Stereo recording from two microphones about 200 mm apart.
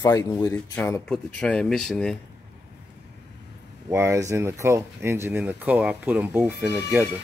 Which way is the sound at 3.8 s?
15° right (ahead or behind).